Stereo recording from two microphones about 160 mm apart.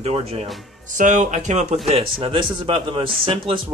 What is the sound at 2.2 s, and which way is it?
Speech, 35° right (ahead or behind).